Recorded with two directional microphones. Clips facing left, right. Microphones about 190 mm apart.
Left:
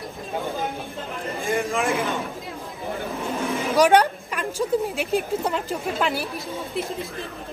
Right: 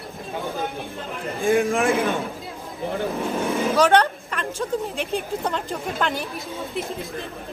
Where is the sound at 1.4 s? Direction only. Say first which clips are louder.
Right 5 dB; 55° right (ahead or behind).